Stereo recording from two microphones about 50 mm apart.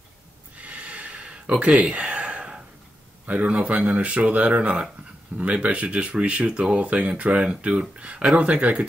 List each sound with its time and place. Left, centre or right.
0.6 s gasp: right
1.8 s a sound: right
3.3 s speech: right